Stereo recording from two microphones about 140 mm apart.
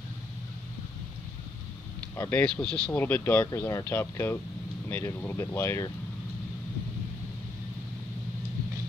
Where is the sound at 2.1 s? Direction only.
20° left (ahead or behind).